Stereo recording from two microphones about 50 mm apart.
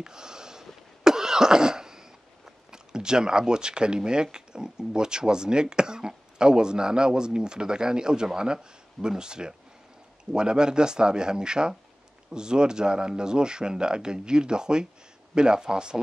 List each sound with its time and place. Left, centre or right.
0.0 s cough: centre
2.7 s speech: centre